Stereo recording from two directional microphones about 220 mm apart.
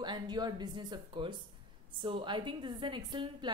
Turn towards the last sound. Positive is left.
turn(degrees=-20)  # may be behind; listen again after turning